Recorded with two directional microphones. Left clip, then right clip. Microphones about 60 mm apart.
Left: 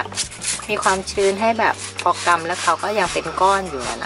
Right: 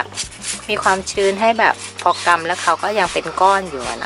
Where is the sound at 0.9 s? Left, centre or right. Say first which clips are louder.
Right 3 dB; centre.